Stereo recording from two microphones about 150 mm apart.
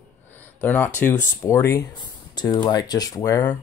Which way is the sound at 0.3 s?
15° left (ahead or behind).